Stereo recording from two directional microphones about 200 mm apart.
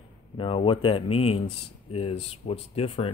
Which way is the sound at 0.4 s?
25° left (ahead or behind).